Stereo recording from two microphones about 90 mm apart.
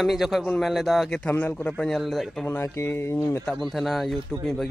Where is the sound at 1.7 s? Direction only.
5° left (ahead or behind).